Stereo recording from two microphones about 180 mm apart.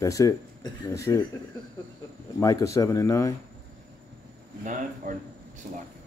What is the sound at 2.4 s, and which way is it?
Speech, 15° left (ahead or behind).